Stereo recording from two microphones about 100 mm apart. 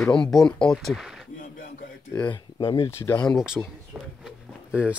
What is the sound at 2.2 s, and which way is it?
Speech, 50° left (ahead or behind).